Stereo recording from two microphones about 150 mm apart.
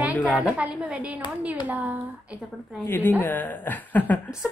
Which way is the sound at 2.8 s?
15° left (ahead or behind).